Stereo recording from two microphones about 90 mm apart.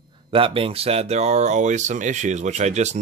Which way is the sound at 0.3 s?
90° right.